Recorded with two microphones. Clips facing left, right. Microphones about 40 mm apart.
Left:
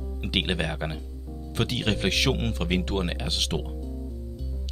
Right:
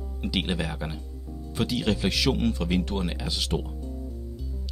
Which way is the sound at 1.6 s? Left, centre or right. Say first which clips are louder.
Right 1 dB; left.